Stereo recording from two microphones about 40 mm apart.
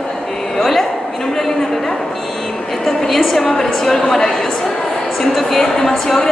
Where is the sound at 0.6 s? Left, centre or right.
Centre.